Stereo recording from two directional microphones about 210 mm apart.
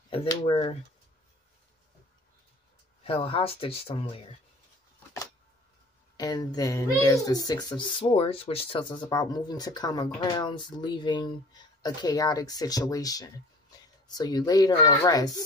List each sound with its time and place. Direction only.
0.1 s speech: 25° left (ahead or behind)
3.0 s speech: 25° left (ahead or behind)
6.1 s speech: 20° left (ahead or behind)